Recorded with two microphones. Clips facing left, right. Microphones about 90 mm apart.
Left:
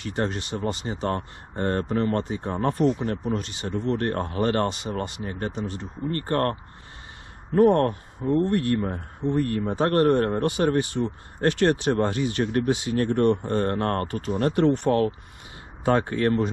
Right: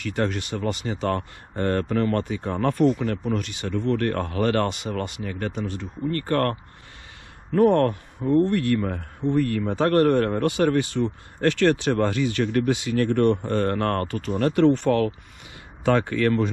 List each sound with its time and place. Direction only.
0.0 s speech: 25° left (ahead or behind)
5.2 s speech: 30° left (ahead or behind)
5.5 s speech: 20° left (ahead or behind)
7.5 s speech: 25° left (ahead or behind)